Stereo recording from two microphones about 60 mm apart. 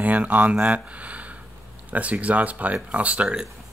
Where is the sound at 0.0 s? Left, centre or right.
Right.